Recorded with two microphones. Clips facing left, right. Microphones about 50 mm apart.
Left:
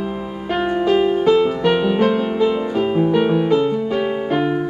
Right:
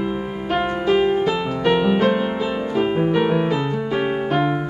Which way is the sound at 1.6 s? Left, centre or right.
Centre.